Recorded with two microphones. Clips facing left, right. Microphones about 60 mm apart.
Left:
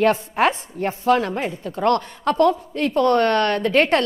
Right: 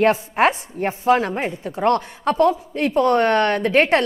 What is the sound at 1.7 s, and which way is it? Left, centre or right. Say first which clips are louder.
Speech: even; centre.